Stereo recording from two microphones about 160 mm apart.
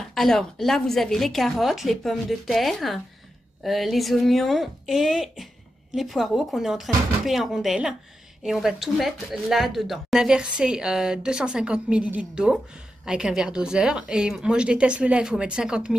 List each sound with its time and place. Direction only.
0.1 s speech: centre (ahead or behind)